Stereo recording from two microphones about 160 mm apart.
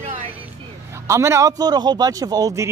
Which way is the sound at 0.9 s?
15° right (ahead or behind).